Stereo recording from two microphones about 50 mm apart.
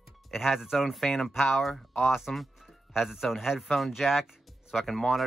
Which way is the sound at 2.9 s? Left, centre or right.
Centre.